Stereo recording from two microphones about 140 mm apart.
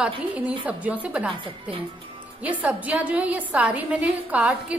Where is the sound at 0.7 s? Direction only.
10° right (ahead or behind).